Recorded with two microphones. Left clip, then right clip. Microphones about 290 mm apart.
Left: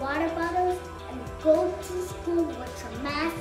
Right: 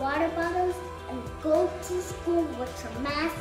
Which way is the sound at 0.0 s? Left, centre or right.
Centre.